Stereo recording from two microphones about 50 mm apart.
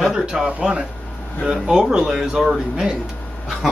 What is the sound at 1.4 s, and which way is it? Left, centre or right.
Speech, centre.